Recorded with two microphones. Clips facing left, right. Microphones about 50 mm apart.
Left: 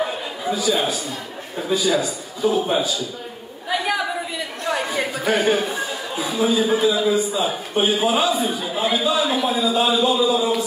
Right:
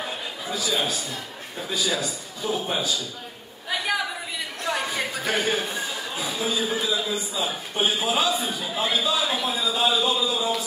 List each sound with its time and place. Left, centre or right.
0.5 s a man's voice: centre
3.6 s a sound: centre
6.4 s a man's voice: centre